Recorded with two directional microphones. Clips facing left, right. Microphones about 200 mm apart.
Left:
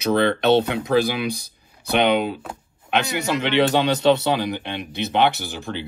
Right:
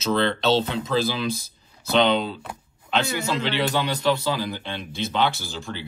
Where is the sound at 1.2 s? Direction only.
60° left (ahead or behind).